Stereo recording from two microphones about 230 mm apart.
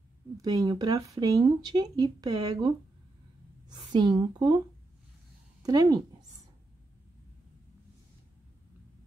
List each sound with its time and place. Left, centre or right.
0.4 s a woman's voice: centre
5.6 s speech: centre